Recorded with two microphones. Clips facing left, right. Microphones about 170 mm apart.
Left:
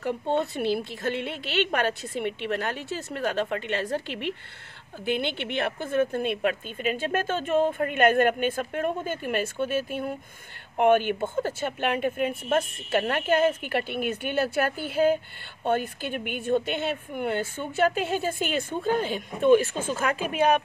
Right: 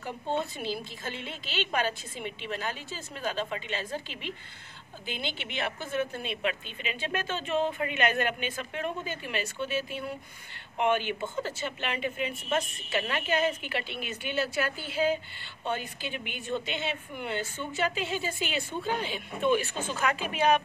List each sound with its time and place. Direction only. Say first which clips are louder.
0.0 s a woman's voice: left 6 dB; 65° left (ahead or behind)